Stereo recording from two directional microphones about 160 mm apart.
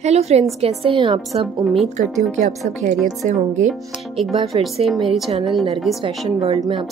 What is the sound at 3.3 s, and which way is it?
Speech, 50° right (ahead or behind).